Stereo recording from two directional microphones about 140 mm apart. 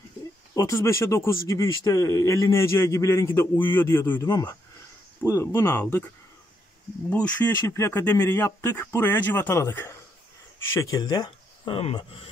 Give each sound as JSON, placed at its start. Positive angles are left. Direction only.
{"t": 0.6, "sound": "speech", "side_deg": 20}
{"t": 7.1, "sound": "speech", "side_deg": 10}